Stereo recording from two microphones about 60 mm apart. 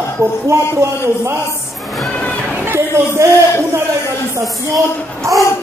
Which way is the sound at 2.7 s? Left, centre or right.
Right.